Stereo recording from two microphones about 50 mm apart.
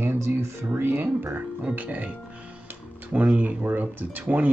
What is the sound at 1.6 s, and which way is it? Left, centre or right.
Speech, right.